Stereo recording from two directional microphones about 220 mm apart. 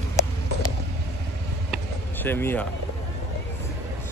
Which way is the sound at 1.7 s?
10° left (ahead or behind).